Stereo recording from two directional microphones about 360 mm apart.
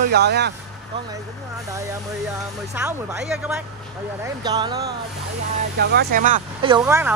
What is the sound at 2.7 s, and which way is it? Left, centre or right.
Speech, centre.